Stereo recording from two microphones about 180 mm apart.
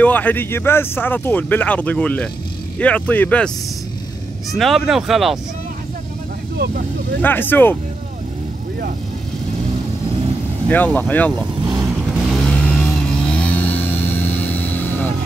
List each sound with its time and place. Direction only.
0.0 s speech: 10° left (ahead or behind)
6.5 s speech: 60° right (ahead or behind)
7.2 s speech: 10° left (ahead or behind)
10.7 s speech: 10° left (ahead or behind)
11.6 s vehicle: 20° right (ahead or behind)
11.9 s vehicle: 5° right (ahead or behind); by 15.1 s 10° left (ahead or behind)